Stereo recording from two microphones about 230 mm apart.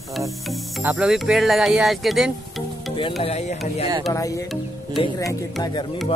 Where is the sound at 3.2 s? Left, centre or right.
Left.